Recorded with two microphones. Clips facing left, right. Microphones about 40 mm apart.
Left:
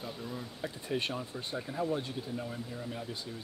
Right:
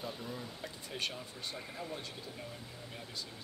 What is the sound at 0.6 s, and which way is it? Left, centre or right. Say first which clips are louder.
Speech: left 8 dB; left.